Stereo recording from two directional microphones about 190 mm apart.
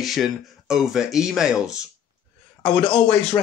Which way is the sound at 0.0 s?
Centre (ahead or behind).